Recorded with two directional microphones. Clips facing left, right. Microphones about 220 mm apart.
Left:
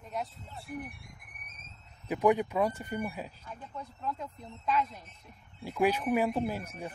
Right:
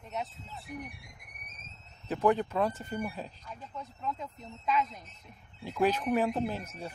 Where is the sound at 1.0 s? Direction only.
50° left (ahead or behind).